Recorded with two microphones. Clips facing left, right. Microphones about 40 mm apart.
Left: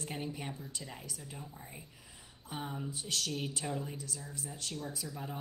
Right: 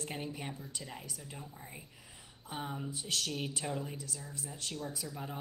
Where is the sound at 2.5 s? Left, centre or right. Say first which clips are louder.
Even; centre.